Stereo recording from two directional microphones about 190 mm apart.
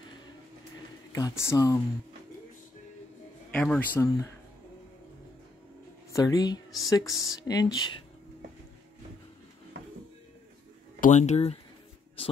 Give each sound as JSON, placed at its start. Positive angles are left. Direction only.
{"t": 1.1, "sound": "speech", "side_deg": 15}
{"t": 3.5, "sound": "speech", "side_deg": 5}
{"t": 6.1, "sound": "speech", "side_deg": 20}
{"t": 11.0, "sound": "speech", "side_deg": 40}